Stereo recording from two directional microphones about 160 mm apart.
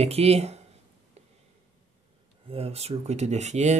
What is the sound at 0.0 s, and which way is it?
Speech, 40° right (ahead or behind).